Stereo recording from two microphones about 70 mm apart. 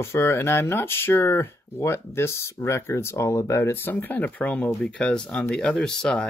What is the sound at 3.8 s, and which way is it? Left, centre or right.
Speech, left.